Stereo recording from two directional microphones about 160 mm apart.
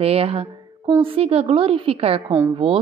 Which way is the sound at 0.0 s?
40° right (ahead or behind).